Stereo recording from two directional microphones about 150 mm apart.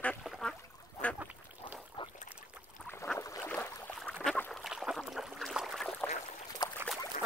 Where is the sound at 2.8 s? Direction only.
15° left (ahead or behind).